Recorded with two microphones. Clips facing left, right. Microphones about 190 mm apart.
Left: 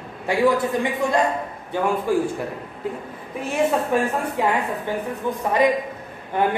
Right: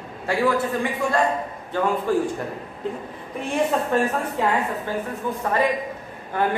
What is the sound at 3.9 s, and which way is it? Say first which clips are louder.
A man's voice: left 1 dB; 10° left (ahead or behind).